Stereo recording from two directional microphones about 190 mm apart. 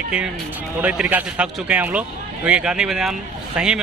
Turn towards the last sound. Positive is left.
turn(degrees=-5)  # may be behind; listen again after turning